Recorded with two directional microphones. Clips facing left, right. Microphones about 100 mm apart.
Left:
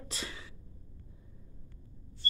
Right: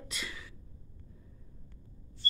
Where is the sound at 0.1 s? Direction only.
30° left (ahead or behind).